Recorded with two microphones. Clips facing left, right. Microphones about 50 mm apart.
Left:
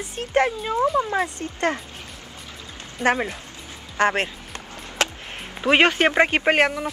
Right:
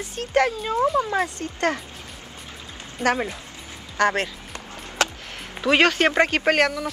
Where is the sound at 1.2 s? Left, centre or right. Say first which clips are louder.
Even; left.